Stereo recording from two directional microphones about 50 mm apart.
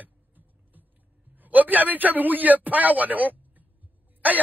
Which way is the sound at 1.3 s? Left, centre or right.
Right.